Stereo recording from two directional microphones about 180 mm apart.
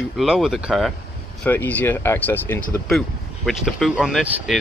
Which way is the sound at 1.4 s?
10° left (ahead or behind).